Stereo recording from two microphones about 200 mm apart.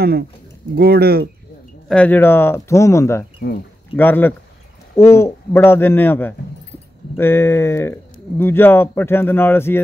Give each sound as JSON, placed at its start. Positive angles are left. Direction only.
{"t": 0.7, "sound": "speech", "side_deg": -50}
{"t": 1.9, "sound": "speech", "side_deg": 5}